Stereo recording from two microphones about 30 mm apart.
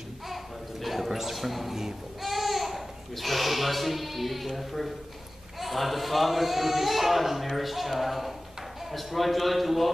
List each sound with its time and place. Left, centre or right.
0.3 s gargling: centre
2.2 s speech: centre